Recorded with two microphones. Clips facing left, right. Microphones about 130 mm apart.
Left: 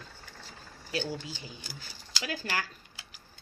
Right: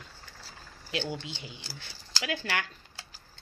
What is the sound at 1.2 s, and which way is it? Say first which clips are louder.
Speech: even; 40° left (ahead or behind).